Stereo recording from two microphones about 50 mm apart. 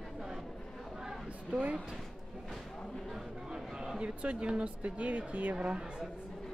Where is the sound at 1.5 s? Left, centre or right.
Right.